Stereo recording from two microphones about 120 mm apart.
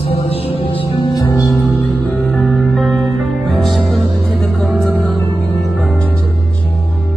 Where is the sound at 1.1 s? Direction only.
20° left (ahead or behind).